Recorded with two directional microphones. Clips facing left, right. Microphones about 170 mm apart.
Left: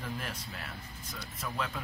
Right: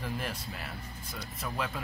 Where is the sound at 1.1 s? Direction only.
10° right (ahead or behind).